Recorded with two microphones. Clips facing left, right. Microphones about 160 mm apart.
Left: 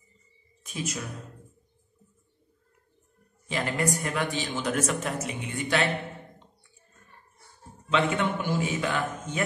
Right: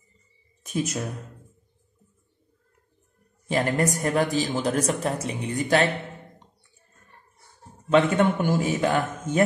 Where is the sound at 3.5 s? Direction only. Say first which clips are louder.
Right 5 dB; 45° right (ahead or behind).